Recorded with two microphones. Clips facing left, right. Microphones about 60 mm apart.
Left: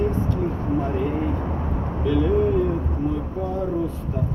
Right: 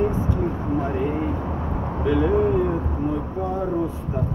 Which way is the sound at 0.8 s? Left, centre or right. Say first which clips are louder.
Even; centre.